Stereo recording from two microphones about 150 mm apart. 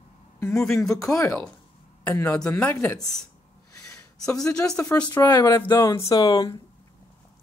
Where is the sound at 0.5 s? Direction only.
Centre (ahead or behind).